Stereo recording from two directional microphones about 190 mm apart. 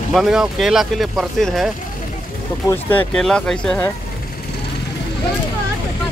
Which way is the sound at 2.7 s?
10° left (ahead or behind).